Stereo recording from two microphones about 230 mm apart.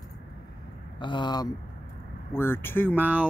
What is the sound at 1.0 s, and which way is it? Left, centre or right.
Speech, centre.